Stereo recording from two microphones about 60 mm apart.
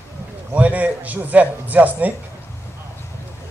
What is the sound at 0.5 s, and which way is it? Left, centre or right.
Speech, right.